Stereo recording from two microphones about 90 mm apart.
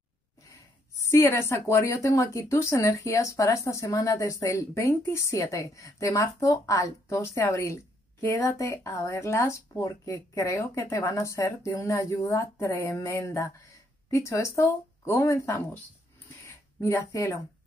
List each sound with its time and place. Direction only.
0.5 s speech: 30° left (ahead or behind)
16.8 s speech: 35° left (ahead or behind)